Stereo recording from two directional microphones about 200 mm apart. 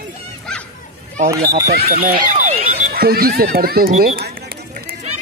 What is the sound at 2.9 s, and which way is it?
Speech, 50° right (ahead or behind).